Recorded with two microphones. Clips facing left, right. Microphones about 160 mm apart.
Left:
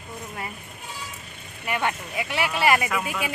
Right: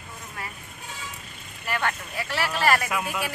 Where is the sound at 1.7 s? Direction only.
15° left (ahead or behind).